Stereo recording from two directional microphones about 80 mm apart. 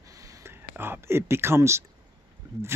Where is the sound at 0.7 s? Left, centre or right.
Right.